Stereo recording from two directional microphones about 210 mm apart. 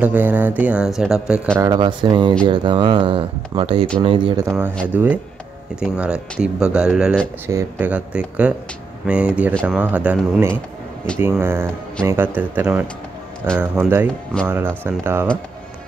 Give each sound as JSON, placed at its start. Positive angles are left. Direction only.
{"t": 0.0, "sound": "speech", "side_deg": -10}
{"t": 1.6, "sound": "speech", "side_deg": -20}
{"t": 4.5, "sound": "speech", "side_deg": -10}
{"t": 9.8, "sound": "speech", "side_deg": -5}